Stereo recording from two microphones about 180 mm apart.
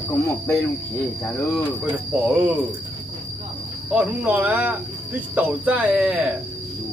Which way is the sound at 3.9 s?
10° right (ahead or behind).